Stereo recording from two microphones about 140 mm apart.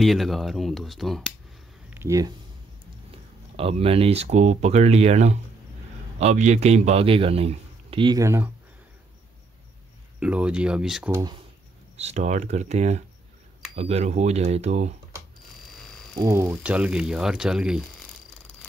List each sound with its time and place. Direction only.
0.0 s speech: centre (ahead or behind)
1.9 s a sound: 20° right (ahead or behind)
3.5 s a man's voice: 45° right (ahead or behind)
8.2 s speech: 20° right (ahead or behind)
10.2 s speech: 10° right (ahead or behind)
11.1 s speech: 20° right (ahead or behind)
12.0 s speech: 55° right (ahead or behind)
16.2 s speech: 20° right (ahead or behind)